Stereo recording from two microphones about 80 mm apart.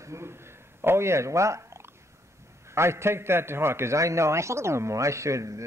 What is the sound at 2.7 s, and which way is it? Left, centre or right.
Speech, right.